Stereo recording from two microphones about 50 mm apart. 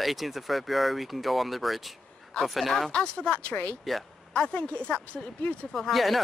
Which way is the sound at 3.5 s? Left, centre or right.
Left.